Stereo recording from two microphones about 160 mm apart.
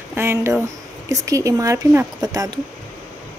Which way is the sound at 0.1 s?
15° right (ahead or behind).